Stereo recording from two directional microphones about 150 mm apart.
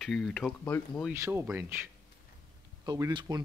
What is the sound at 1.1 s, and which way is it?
Speech, 20° right (ahead or behind).